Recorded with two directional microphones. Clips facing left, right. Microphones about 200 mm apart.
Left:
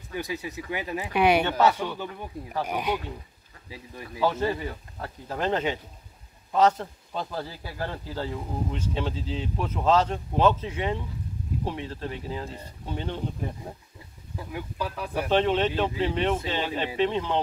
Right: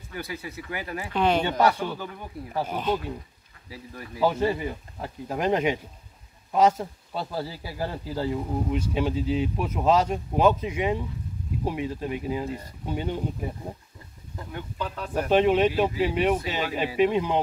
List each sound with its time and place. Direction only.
0.1 s speech: 20° left (ahead or behind)
2.7 s speech: 10° left (ahead or behind)
4.2 s speech: 10° right (ahead or behind)
14.3 s speech: 5° left (ahead or behind)
15.2 s speech: 10° right (ahead or behind)